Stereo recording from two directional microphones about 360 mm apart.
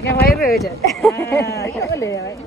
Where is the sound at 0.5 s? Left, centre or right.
Centre.